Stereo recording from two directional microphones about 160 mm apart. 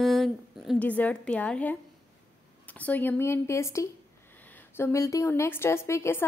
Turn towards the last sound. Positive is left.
turn(degrees=15)  # may be behind; listen again after turning